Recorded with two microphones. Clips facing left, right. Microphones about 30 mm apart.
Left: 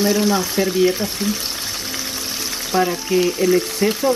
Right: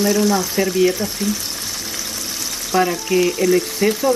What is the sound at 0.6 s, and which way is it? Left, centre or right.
Speech, centre.